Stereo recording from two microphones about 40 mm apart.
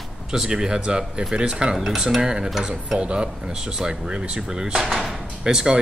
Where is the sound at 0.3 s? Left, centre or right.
Centre.